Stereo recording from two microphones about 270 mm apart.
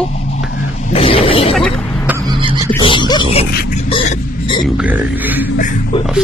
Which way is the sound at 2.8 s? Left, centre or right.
Centre.